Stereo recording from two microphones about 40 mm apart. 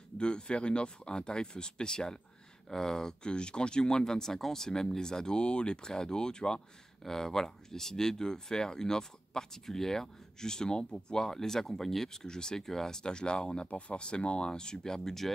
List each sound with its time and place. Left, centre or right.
0.2 s speech: left